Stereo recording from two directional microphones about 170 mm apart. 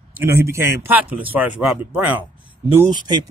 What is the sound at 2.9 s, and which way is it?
Speech, 25° right (ahead or behind).